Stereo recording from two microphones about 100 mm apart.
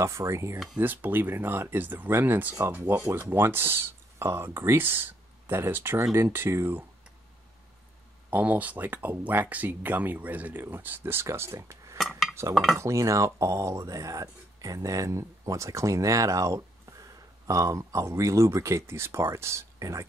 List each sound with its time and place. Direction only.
0.0 s speech: 30° right (ahead or behind)
0.7 s speech: 20° right (ahead or behind)
8.3 s speech: 15° right (ahead or behind); by 12.0 s 30° right (ahead or behind)
12.0 s cutlery: centre (ahead or behind)
12.7 s speech: 30° right (ahead or behind)